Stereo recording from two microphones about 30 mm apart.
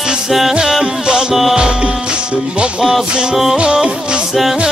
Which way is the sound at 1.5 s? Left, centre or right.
Right.